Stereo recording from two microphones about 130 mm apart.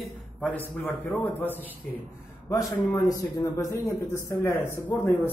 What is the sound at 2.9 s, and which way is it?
Speech, 30° left (ahead or behind).